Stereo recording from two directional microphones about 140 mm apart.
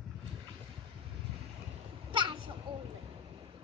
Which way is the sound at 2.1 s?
35° right (ahead or behind).